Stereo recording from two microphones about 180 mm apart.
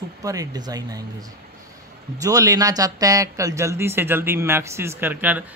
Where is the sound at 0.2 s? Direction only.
20° right (ahead or behind).